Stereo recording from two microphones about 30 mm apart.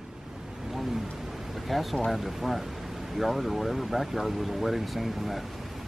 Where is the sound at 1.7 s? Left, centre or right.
Centre.